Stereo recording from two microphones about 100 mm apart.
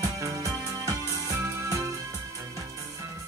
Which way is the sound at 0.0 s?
35° right (ahead or behind).